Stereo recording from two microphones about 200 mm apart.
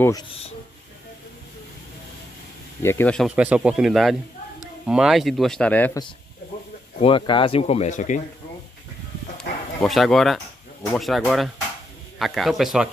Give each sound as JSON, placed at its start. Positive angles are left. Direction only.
{"t": 2.8, "sound": "speech", "side_deg": 10}
{"t": 3.3, "sound": "speech", "side_deg": -5}
{"t": 7.0, "sound": "speech", "side_deg": 25}
{"t": 9.8, "sound": "speech", "side_deg": 0}